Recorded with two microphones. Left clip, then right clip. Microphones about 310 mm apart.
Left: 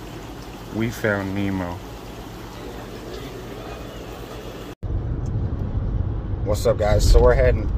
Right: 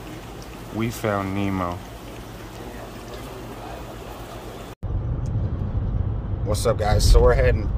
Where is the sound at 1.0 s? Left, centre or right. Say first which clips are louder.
Left 1 dB; right.